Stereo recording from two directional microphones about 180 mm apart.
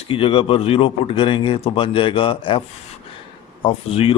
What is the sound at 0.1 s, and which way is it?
Speech, 30° left (ahead or behind).